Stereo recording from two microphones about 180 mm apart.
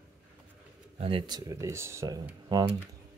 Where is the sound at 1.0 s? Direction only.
25° right (ahead or behind).